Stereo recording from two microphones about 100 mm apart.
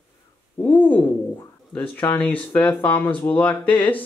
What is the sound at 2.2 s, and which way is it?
Speech, 15° left (ahead or behind).